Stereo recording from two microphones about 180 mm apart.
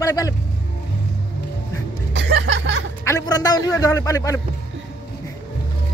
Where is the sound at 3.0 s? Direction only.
20° left (ahead or behind).